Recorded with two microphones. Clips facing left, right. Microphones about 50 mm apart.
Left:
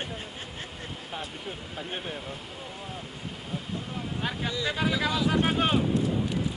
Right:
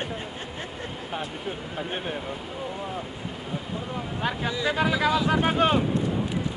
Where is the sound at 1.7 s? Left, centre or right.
Centre.